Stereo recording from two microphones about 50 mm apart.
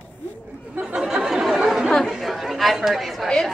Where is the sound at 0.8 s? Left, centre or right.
Centre.